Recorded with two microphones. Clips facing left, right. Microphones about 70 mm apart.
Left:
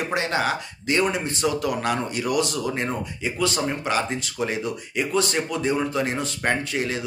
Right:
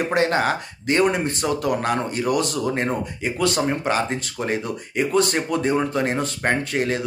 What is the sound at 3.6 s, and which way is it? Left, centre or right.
Speech, right.